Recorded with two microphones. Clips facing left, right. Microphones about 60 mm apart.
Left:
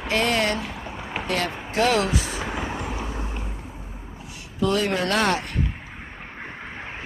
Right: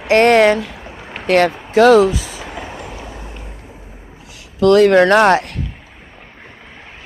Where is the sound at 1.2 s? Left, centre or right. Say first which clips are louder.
Right 14 dB; right.